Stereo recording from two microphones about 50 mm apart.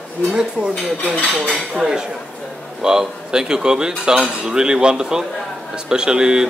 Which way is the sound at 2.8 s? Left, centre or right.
Centre.